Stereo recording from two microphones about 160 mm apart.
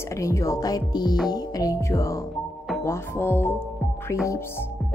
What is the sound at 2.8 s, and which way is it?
Music, 15° left (ahead or behind).